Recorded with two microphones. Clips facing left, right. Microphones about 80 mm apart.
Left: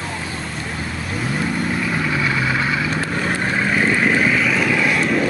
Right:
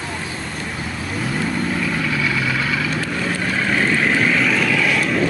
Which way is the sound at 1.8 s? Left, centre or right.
Centre.